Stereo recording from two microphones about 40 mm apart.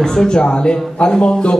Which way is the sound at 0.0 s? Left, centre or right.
Centre.